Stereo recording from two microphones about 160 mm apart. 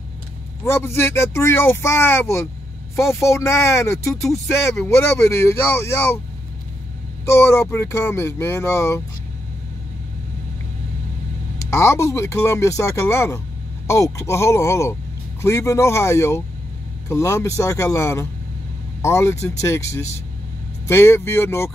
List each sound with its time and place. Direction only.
0.7 s speech: 15° left (ahead or behind)
7.2 s speech: 15° left (ahead or behind)
11.5 s speech: 15° left (ahead or behind)